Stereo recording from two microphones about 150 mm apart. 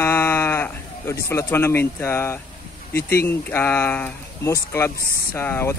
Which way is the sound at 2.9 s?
90° left.